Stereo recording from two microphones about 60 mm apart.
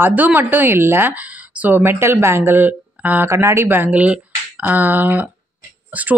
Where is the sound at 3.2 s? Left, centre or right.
Right.